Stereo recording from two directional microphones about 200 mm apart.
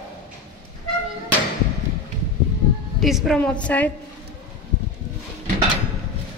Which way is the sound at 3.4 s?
5° left (ahead or behind).